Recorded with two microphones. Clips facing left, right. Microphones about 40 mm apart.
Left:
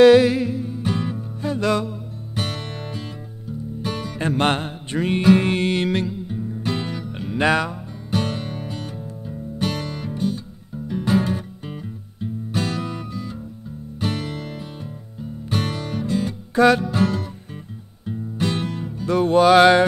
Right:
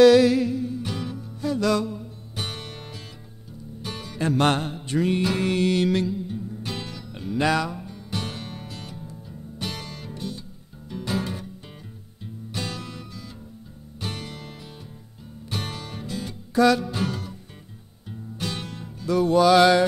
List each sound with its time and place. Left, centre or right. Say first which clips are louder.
0.0 s music: left 2 dB; left
2.3 s music: left 6 dB; centre
4.2 s music: left 1 dB; left
6.2 s music: left 6 dB; left
7.2 s music: left 3 dB; left
8.1 s music: left 8 dB; left
16.5 s music: left 3 dB; left
16.8 s music: left 7 dB; centre
19.0 s music: left 3 dB; left